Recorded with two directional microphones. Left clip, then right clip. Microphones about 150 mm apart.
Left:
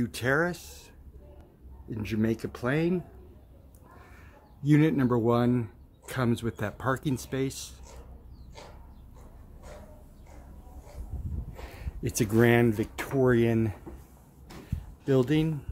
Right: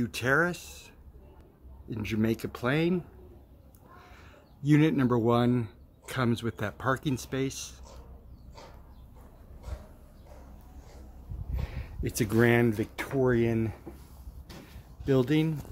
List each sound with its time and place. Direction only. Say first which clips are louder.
0.0 s speech: right 1 dB; 5° left (ahead or behind)
4.6 s speech: even; 5° left (ahead or behind)
11.7 s speech: left 2 dB; 10° left (ahead or behind)
15.0 s speech: left 1 dB; centre (ahead or behind)